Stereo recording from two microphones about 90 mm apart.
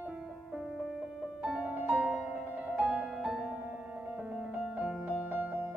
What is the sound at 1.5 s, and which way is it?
Music, 15° right (ahead or behind).